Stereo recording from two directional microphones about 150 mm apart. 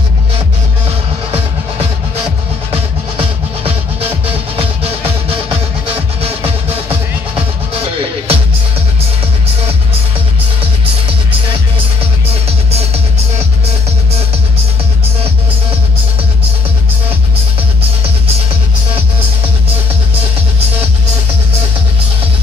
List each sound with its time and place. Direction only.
2.7 s music: 40° right (ahead or behind)
6.9 s music: 40° right (ahead or behind)